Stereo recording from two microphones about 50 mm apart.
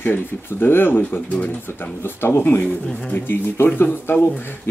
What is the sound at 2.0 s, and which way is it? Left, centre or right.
Speech, left.